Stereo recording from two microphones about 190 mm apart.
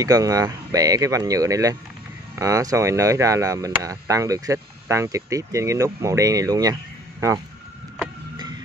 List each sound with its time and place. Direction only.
0.0 s speech: 20° right (ahead or behind)